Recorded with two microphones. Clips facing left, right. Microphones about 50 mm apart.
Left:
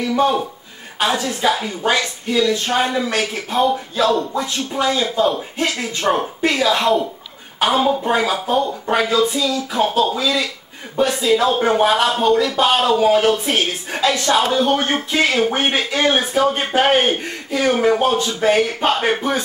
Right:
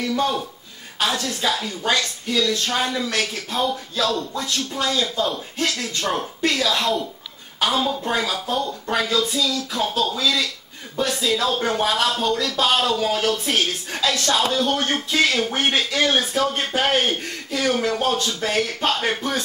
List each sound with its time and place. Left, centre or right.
0.0 s speech: left